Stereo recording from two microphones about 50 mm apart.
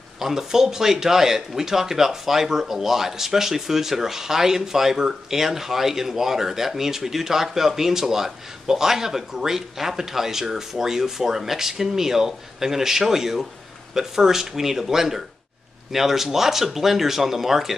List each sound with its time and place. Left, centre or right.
0.2 s speech: centre